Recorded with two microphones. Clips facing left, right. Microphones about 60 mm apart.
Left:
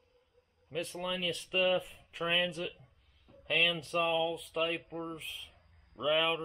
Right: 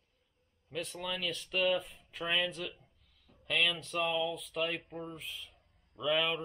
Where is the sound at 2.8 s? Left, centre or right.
Centre.